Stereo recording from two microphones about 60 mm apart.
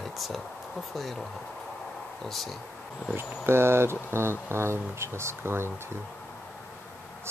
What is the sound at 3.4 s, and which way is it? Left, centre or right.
Speech, right.